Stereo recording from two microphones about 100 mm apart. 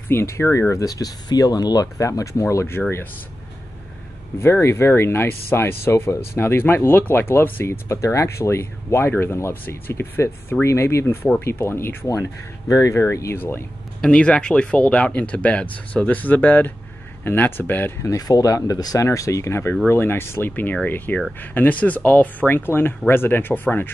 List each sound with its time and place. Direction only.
0.1 s speech: 25° left (ahead or behind)
0.8 s speech: 40° left (ahead or behind)
4.4 s speech: 25° left (ahead or behind)
14.0 s speech: 10° left (ahead or behind)